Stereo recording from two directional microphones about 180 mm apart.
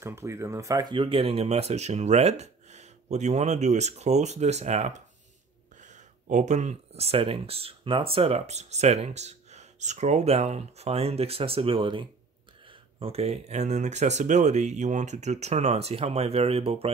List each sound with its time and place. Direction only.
0.0 s speech: 15° right (ahead or behind); by 16.9 s 35° right (ahead or behind)